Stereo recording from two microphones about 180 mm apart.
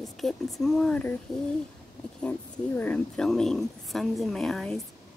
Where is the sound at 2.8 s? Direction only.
5° left (ahead or behind).